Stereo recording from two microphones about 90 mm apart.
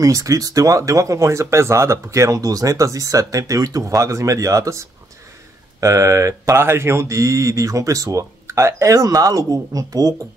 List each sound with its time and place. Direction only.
0.0 s speech: 40° right (ahead or behind)